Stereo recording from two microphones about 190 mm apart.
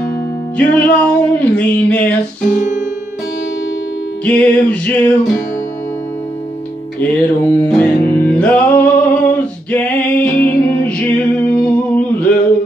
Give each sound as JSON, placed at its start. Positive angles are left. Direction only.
{"t": 0.6, "sound": "music", "side_deg": 5}
{"t": 2.5, "sound": "music", "side_deg": 40}
{"t": 4.2, "sound": "music", "side_deg": 5}
{"t": 7.0, "sound": "music", "side_deg": 5}